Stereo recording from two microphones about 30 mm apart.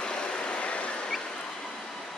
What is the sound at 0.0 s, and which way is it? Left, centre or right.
Waves, left.